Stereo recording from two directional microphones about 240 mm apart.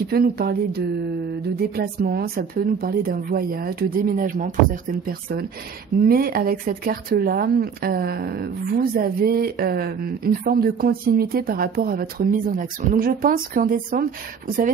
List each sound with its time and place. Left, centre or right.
0.1 s speech: right